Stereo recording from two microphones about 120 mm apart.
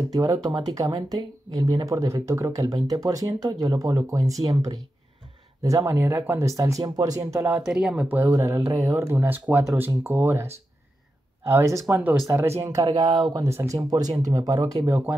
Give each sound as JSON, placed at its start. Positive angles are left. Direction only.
{"t": 0.1, "sound": "speech", "side_deg": -30}
{"t": 7.6, "sound": "speech", "side_deg": -5}
{"t": 8.2, "sound": "speech", "side_deg": -20}
{"t": 11.5, "sound": "speech", "side_deg": -25}
{"t": 11.9, "sound": "speech", "side_deg": -15}
{"t": 12.8, "sound": "speech", "side_deg": -35}